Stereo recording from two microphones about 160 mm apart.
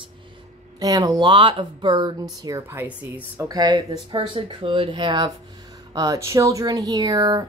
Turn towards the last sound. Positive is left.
turn(degrees=-25)  # may be behind; listen again after turning